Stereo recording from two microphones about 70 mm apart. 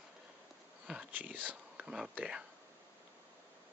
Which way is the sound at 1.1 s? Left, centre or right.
Right.